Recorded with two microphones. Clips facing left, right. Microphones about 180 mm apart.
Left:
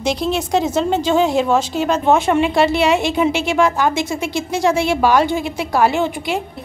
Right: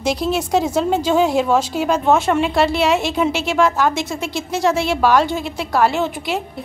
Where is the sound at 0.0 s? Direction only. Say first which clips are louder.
Even; 5° right (ahead or behind).